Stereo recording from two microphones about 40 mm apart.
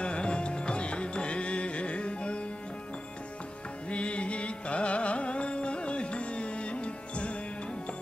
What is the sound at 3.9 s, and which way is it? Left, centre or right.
Music, left.